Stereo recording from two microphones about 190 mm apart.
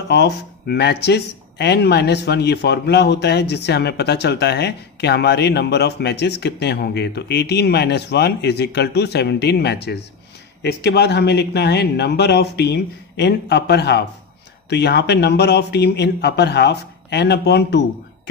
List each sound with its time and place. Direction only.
0.1 s speech: 60° left (ahead or behind)